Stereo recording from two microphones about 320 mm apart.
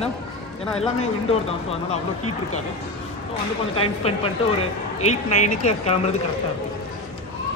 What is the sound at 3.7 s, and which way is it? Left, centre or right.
Speech, centre.